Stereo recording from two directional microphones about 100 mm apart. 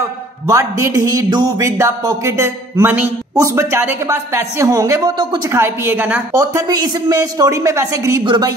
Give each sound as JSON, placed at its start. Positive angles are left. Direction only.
{"t": 0.5, "sound": "speech", "side_deg": -30}
{"t": 6.3, "sound": "a woman's voice", "side_deg": -35}
{"t": 8.2, "sound": "a woman's voice", "side_deg": -50}